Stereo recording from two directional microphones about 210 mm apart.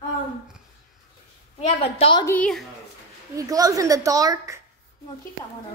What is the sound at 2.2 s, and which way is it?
Speech, 5° left (ahead or behind).